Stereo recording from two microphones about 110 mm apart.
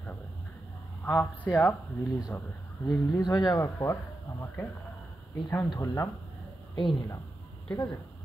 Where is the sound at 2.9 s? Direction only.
35° left (ahead or behind).